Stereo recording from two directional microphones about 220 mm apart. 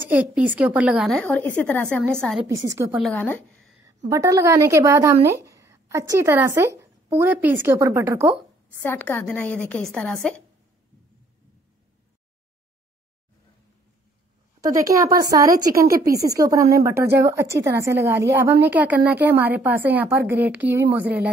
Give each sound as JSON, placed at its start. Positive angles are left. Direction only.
{"t": 0.1, "sound": "a woman's voice", "side_deg": -5}
{"t": 2.4, "sound": "a woman's voice", "side_deg": -15}
{"t": 3.0, "sound": "a woman's voice", "side_deg": 5}
{"t": 4.1, "sound": "a woman's voice", "side_deg": -15}
{"t": 8.8, "sound": "a woman's voice", "side_deg": 10}
{"t": 14.6, "sound": "a woman's voice", "side_deg": -15}